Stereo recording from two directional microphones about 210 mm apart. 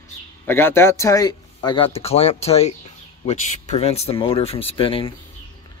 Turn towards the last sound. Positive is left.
turn(degrees=25)  # may be behind; listen again after turning